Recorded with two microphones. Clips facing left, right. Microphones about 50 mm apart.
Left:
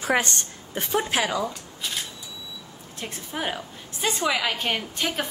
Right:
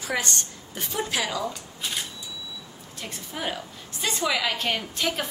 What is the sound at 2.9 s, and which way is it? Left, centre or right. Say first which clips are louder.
A woman's voice: left 3 dB; left.